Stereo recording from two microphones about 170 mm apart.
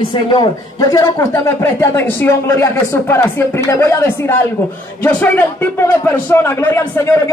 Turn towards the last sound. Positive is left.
turn(degrees=15)  # may be behind; listen again after turning